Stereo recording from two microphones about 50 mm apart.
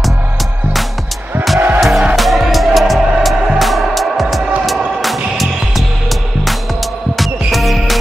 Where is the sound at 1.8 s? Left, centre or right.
Centre.